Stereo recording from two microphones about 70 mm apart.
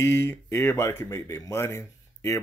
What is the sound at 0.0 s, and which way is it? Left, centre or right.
Speech, left.